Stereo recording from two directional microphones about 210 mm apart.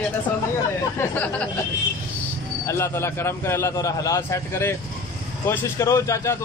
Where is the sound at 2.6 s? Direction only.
15° left (ahead or behind).